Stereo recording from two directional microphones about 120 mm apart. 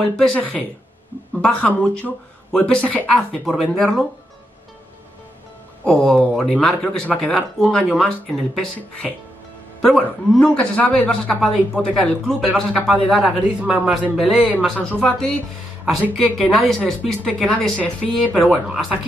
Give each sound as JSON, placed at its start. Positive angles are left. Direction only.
{"t": 0.0, "sound": "a man's voice", "side_deg": 5}
{"t": 5.9, "sound": "a man's voice", "side_deg": 5}
{"t": 16.3, "sound": "speech", "side_deg": 0}
{"t": 18.2, "sound": "speech", "side_deg": -5}